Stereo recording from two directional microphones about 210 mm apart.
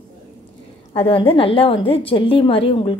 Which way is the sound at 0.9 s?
25° left (ahead or behind).